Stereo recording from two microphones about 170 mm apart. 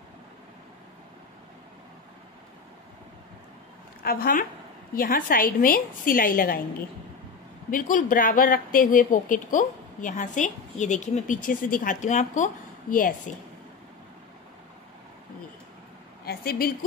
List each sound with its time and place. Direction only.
4.0 s a woman's voice: 60° left (ahead or behind)
7.7 s a woman's voice: 55° left (ahead or behind)
16.3 s a woman's voice: 60° left (ahead or behind)